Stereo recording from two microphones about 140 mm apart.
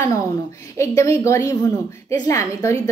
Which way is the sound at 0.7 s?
20° left (ahead or behind).